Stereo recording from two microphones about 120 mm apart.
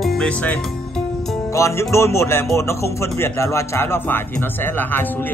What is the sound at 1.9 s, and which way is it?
Speech, 25° left (ahead or behind).